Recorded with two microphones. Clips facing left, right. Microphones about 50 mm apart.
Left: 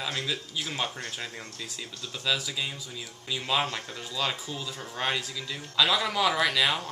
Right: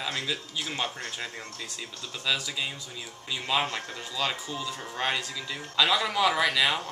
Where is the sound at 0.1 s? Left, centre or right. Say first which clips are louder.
Even; centre.